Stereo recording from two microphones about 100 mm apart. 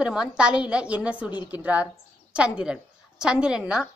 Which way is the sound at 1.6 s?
15° right (ahead or behind).